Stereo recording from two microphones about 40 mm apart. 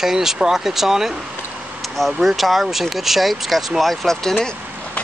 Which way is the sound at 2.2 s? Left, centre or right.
Centre.